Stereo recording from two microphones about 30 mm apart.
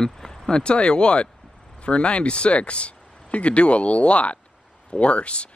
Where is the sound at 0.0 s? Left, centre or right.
Left.